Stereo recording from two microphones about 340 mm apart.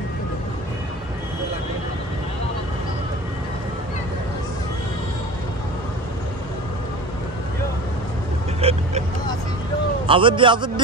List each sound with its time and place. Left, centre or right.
8.5 s vehicle: centre
10.0 s a man's voice: centre